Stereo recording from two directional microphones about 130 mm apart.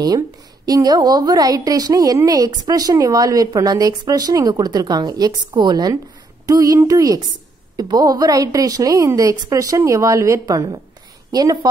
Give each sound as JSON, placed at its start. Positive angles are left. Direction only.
{"t": 0.7, "sound": "a woman's voice", "side_deg": -30}